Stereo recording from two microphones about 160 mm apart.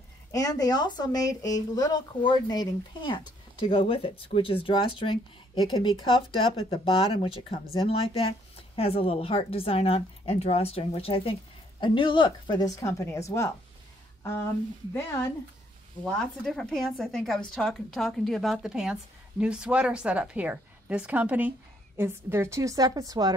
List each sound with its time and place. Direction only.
0.3 s speech: 20° left (ahead or behind)
6.7 s a woman's voice: 35° left (ahead or behind); by 13.5 s 20° left (ahead or behind)
15.0 s speech: 15° left (ahead or behind)
16.0 s a woman's voice: 5° left (ahead or behind); by 23.3 s 25° right (ahead or behind)